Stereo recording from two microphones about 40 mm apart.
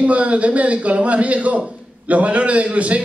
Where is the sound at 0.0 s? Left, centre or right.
Right.